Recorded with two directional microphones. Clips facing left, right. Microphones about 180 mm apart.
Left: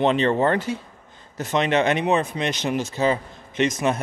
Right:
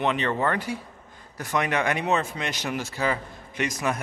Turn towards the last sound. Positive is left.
turn(degrees=25)  # may be behind; listen again after turning